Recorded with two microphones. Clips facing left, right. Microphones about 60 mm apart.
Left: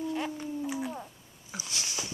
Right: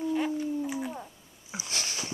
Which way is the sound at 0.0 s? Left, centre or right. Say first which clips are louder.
Right 4 dB; centre.